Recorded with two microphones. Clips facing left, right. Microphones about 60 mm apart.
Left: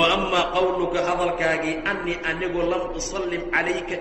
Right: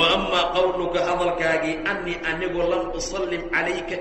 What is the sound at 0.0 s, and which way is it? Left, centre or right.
Mantra, centre.